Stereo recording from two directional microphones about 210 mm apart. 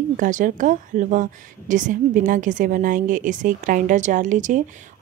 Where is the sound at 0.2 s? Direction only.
35° right (ahead or behind).